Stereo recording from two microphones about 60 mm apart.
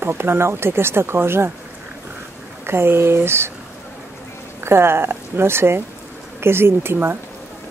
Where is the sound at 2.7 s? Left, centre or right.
Right.